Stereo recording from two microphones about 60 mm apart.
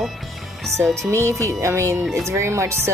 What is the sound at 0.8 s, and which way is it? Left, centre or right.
Speech, right.